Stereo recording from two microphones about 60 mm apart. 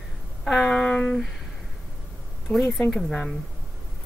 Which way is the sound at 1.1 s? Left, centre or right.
Centre.